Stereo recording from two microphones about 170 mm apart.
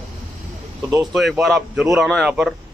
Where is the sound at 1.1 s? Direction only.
Centre (ahead or behind).